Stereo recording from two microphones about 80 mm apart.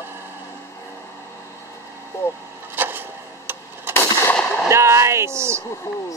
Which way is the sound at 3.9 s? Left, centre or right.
Centre.